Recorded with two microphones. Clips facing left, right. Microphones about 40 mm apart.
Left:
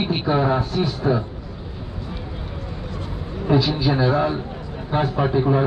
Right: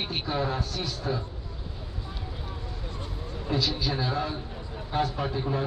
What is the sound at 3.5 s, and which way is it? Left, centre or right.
A man's voice, left.